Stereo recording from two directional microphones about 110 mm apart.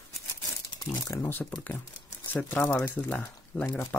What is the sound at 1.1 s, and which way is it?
Speech, 20° left (ahead or behind).